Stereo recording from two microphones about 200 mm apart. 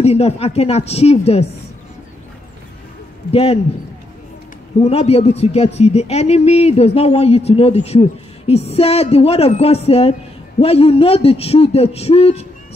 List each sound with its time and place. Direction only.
0.0 s speech: 30° left (ahead or behind)
3.3 s a man's voice: 30° left (ahead or behind)
4.7 s a man's voice: 30° left (ahead or behind)